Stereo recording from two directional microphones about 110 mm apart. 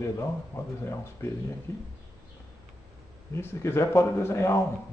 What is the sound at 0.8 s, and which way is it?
Speech, 25° left (ahead or behind).